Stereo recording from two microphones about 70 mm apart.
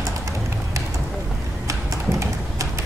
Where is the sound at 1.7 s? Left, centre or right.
Right.